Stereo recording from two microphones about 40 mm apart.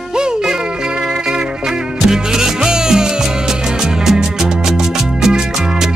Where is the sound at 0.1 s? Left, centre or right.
Centre.